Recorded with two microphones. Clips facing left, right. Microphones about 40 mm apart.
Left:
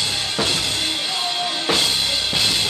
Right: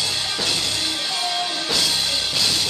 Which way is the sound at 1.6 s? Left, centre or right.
Left.